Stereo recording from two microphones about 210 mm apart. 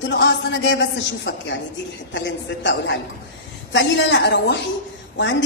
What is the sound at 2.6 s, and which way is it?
A woman's voice, 55° left (ahead or behind).